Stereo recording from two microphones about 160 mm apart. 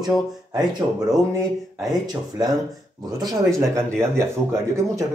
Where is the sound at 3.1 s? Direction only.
20° right (ahead or behind).